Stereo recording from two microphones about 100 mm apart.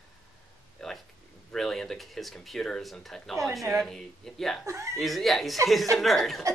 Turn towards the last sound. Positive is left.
turn(degrees=0)  # may be behind; listen again after turning